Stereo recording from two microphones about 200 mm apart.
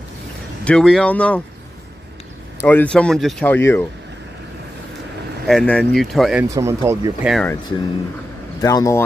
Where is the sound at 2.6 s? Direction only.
10° left (ahead or behind).